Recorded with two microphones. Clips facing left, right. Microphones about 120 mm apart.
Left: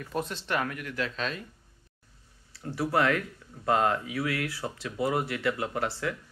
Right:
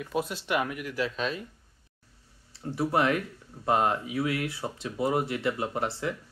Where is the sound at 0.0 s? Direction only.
5° right (ahead or behind).